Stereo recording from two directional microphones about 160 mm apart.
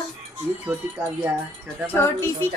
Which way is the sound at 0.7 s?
10° right (ahead or behind).